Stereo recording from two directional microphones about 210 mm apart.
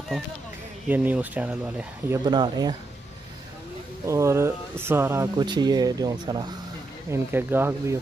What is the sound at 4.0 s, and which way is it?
Speech, 15° right (ahead or behind).